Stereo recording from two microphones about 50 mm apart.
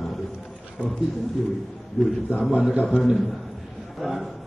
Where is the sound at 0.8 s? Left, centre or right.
Right.